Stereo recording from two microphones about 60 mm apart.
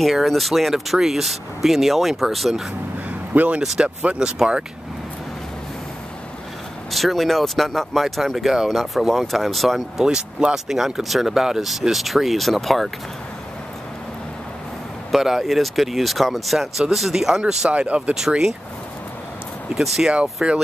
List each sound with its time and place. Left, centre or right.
0.0 s speech: centre
3.1 s vehicle: right
3.6 s speech: centre
6.9 s speech: centre
10.0 s speech: centre
15.0 s speech: centre
17.6 s speech: right
19.7 s speech: centre
20.4 s speech: centre